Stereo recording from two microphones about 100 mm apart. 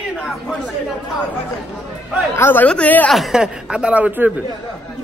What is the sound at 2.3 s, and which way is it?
Speech, 20° left (ahead or behind).